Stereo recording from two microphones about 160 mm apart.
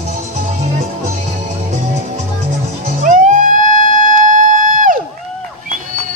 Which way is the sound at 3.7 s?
55° right (ahead or behind).